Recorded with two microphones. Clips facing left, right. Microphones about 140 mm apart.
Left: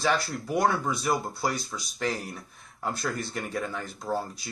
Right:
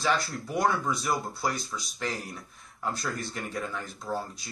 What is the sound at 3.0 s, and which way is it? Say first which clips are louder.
Speech: left 2 dB; 45° left (ahead or behind).